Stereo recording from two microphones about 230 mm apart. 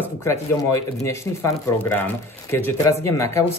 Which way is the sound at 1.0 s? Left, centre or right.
Centre.